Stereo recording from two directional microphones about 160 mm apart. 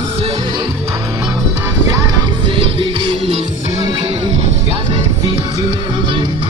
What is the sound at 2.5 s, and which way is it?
Music, 35° right (ahead or behind).